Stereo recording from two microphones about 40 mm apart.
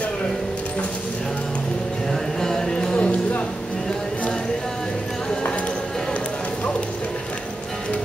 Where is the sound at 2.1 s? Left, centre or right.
Centre.